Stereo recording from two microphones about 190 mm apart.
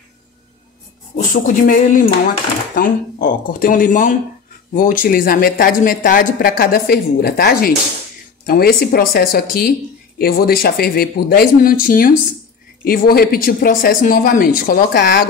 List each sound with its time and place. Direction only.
1.1 s speech: 45° left (ahead or behind)